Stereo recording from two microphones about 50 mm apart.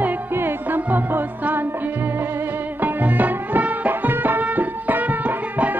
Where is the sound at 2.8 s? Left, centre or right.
Right.